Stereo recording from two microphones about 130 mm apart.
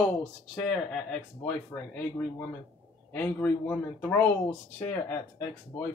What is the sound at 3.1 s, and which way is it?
Speech, 15° left (ahead or behind).